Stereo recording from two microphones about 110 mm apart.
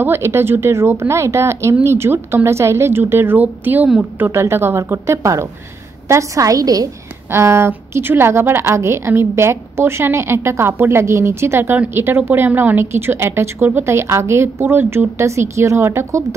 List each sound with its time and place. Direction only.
0.0 s a woman's voice: 20° right (ahead or behind)
7.2 s a woman's voice: 25° right (ahead or behind)